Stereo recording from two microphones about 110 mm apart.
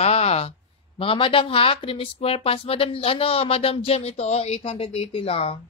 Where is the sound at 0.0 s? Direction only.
70° left (ahead or behind).